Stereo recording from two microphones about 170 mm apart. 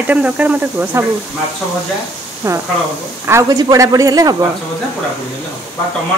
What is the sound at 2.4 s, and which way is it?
Speech, 15° right (ahead or behind).